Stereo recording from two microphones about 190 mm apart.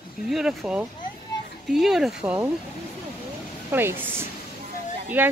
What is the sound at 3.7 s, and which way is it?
Speech, 10° right (ahead or behind).